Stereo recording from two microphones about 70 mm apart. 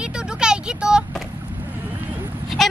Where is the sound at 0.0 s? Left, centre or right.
Centre.